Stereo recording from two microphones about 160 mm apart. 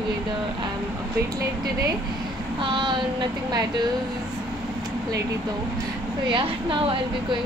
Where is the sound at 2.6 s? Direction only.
30° right (ahead or behind).